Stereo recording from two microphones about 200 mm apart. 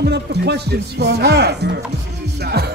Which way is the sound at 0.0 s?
55° right (ahead or behind).